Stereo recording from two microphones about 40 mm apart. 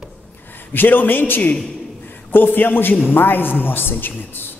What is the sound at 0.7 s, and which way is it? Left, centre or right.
A man's voice, left.